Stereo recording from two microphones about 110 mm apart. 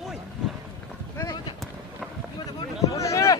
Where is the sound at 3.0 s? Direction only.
30° left (ahead or behind).